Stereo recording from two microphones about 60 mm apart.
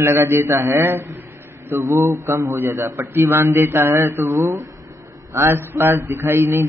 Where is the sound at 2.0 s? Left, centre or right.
Right.